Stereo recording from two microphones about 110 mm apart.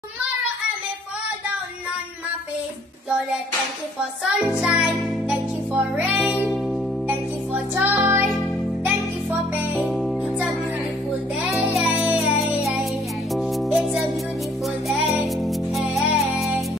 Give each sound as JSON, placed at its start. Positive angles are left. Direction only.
{"t": 4.0, "sound": "music", "side_deg": -5}
{"t": 9.8, "sound": "music", "side_deg": 0}
{"t": 11.7, "sound": "music", "side_deg": 0}
{"t": 13.3, "sound": "music", "side_deg": 0}